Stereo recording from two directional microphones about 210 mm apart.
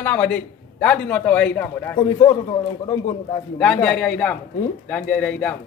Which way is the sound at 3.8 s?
5° left (ahead or behind).